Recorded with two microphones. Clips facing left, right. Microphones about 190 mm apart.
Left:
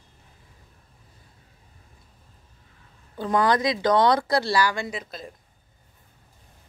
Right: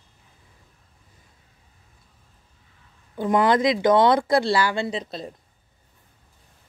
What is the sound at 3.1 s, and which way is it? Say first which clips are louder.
Speech: right 3 dB; 20° right (ahead or behind).